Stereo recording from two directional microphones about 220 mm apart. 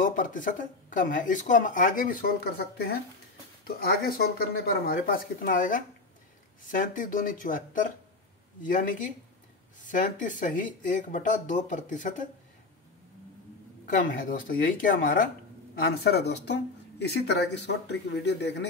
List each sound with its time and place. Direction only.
0.0 s speech: 40° left (ahead or behind)
13.8 s speech: 40° left (ahead or behind)